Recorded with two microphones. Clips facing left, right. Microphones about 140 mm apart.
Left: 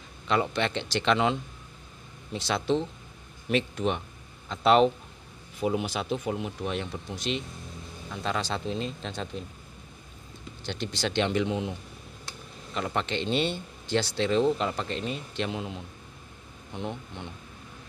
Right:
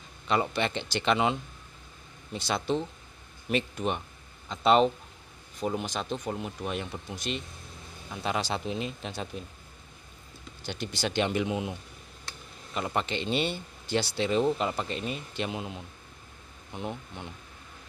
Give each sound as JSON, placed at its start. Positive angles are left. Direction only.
{"t": 0.3, "sound": "speech", "side_deg": -5}
{"t": 10.6, "sound": "speech", "side_deg": -5}
{"t": 12.7, "sound": "speech", "side_deg": -5}